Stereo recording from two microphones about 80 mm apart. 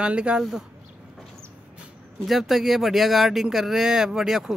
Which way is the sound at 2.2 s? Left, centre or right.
Centre.